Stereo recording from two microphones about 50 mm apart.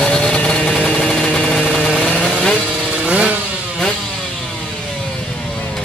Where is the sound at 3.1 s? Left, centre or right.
Right.